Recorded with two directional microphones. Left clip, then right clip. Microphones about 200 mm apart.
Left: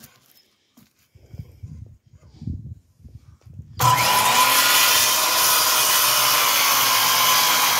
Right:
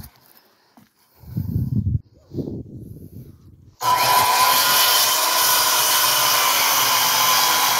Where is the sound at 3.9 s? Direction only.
25° left (ahead or behind).